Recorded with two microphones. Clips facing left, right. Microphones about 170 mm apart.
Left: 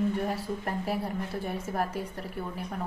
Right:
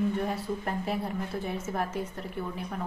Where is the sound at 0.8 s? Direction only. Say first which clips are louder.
Even; 5° left (ahead or behind).